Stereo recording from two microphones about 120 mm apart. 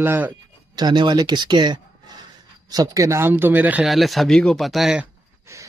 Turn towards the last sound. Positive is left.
turn(degrees=-25)  # may be behind; listen again after turning